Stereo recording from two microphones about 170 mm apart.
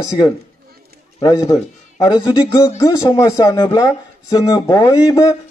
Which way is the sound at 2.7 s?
20° left (ahead or behind).